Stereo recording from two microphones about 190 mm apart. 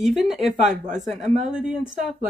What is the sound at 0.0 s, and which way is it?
Speech, centre (ahead or behind).